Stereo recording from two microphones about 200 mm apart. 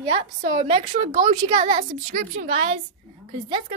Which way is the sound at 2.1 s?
45° right (ahead or behind).